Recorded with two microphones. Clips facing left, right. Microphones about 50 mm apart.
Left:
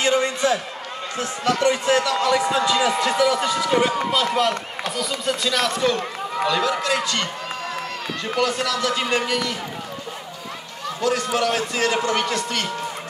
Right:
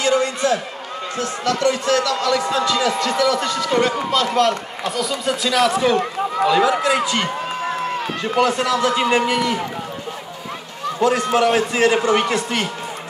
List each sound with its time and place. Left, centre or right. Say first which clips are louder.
0.0 s a sound: right 2 dB; left
1.1 s speech: right 1 dB; left; by 5.9 s centre
6.4 s a man's voice: right 5 dB; centre
11.0 s a man's voice: right 5 dB; right